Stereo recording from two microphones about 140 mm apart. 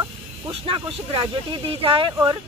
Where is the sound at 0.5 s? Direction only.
40° right (ahead or behind).